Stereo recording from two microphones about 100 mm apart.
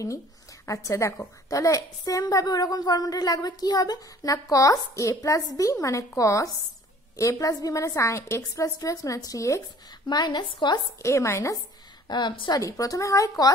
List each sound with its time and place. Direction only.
0.7 s a woman's voice: 30° left (ahead or behind)
10.0 s a woman's voice: 45° left (ahead or behind)
11.0 s speech: 30° left (ahead or behind)
12.1 s a woman's voice: 50° left (ahead or behind)
12.5 s a woman's voice: 35° left (ahead or behind)